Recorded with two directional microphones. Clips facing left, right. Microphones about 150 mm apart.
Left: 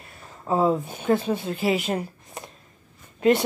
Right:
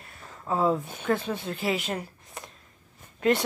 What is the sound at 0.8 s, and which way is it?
A woman's voice, 5° left (ahead or behind).